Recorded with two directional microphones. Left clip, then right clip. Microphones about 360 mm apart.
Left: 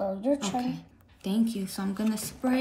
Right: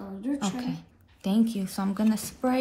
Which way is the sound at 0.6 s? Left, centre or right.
Centre.